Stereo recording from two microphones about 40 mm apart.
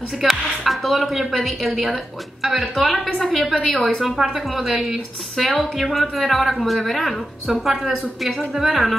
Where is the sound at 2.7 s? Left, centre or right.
Centre.